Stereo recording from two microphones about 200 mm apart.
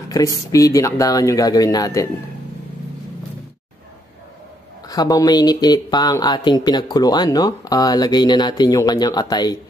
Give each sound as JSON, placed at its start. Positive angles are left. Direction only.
{"t": 0.1, "sound": "speech", "side_deg": 15}
{"t": 4.8, "sound": "speech", "side_deg": 20}